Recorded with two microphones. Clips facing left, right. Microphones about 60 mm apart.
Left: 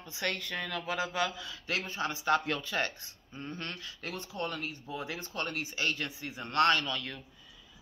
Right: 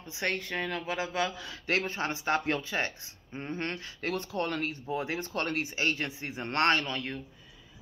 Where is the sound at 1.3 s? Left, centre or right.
Right.